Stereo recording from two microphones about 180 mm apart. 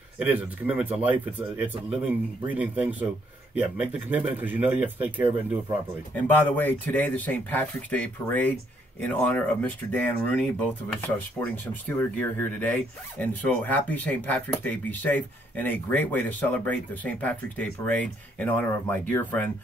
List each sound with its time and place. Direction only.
0.2 s speech: 10° right (ahead or behind)
6.1 s speech: 10° left (ahead or behind)